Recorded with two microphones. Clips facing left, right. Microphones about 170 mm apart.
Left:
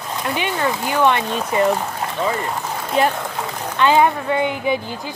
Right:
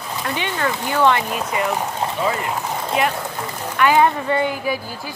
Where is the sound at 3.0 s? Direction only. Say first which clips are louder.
Left 3 dB; 30° left (ahead or behind).